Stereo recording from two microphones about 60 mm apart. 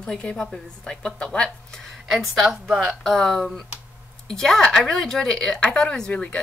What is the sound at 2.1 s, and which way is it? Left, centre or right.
Speech, centre.